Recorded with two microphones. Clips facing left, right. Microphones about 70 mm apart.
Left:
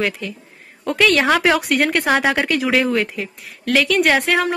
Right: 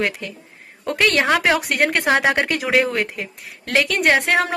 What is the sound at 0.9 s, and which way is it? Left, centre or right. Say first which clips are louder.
Speech: left 3 dB; right.